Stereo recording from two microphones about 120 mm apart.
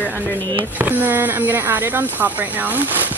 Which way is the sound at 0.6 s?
15° right (ahead or behind).